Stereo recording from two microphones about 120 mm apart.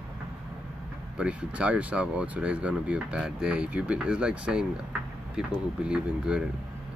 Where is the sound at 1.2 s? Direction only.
10° right (ahead or behind).